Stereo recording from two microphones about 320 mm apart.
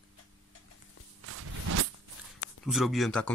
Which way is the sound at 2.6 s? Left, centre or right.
Centre.